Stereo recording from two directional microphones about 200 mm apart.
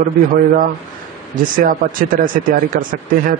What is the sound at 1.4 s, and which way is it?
A man's voice, 45° right (ahead or behind).